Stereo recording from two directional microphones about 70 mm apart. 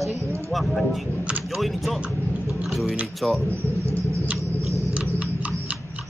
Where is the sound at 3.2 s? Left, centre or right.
Centre.